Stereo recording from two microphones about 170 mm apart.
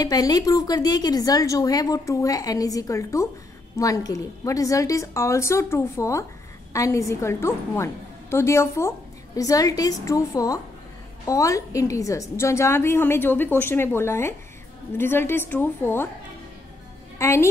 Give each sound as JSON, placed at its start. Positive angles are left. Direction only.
{"t": 0.0, "sound": "a woman's voice", "side_deg": 20}
{"t": 17.2, "sound": "a woman's voice", "side_deg": 15}